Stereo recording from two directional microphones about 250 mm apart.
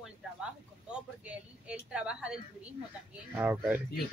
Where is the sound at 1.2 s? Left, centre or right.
Centre.